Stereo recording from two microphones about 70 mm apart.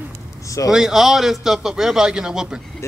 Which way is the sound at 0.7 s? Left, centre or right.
Centre.